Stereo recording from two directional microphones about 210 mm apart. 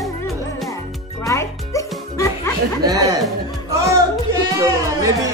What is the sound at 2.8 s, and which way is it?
Chuckle, 15° right (ahead or behind).